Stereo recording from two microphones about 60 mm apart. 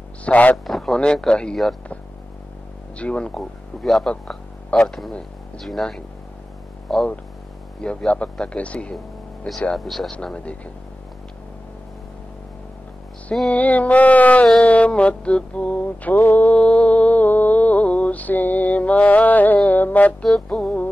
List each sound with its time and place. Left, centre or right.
0.2 s speech: left
0.7 s a sound: centre
0.9 s speech: centre
3.0 s speech: centre
7.8 s mantra: centre
9.8 s speech: centre
10.1 s mantra: centre
13.5 s mantra: left
16.5 s music: left
20.4 s mantra: left